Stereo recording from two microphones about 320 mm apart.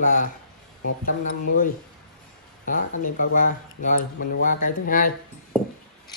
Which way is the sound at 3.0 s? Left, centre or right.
Left.